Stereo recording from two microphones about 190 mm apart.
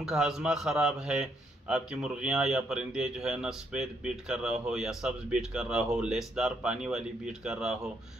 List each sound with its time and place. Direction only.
0.0 s a man's voice: 5° right (ahead or behind)